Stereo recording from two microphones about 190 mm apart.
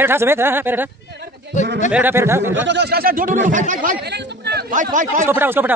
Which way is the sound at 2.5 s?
70° right (ahead or behind).